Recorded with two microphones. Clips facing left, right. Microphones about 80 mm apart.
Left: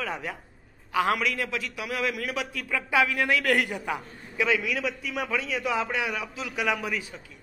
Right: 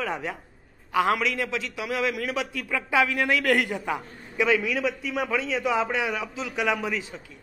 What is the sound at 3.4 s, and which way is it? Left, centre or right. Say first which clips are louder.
Speech: right 2 dB; centre.